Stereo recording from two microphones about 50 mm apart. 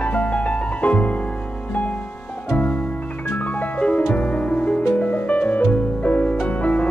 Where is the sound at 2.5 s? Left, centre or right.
Left.